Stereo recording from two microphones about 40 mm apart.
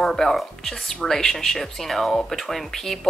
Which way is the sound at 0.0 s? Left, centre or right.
Centre.